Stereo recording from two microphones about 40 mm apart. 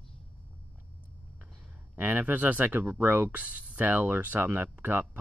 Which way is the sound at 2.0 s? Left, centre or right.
Right.